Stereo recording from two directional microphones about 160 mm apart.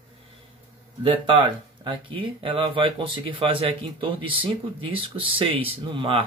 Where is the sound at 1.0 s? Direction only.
30° right (ahead or behind).